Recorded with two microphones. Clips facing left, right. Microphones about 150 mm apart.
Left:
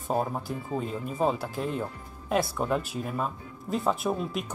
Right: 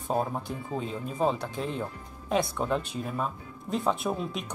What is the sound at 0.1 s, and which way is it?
Speech, 5° left (ahead or behind).